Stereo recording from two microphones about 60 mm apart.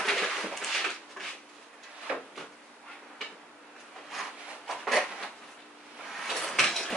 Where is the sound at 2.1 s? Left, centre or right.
Centre.